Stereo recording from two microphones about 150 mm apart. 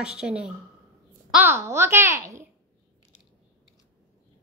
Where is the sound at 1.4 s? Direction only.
15° right (ahead or behind).